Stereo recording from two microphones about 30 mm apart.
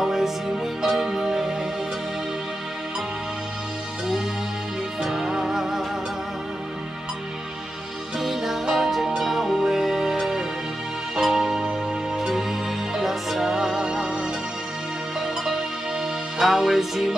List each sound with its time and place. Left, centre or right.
0.0 s music: centre
5.0 s music: centre
8.2 s music: centre
12.3 s music: centre
13.8 s music: right
15.1 s music: centre